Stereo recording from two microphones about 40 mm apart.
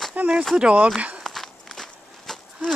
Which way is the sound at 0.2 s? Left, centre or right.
Right.